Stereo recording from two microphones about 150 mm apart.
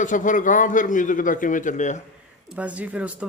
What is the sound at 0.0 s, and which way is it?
A man's voice, 60° left (ahead or behind).